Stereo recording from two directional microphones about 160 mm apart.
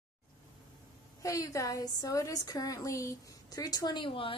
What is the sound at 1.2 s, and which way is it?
A woman's voice, 20° left (ahead or behind).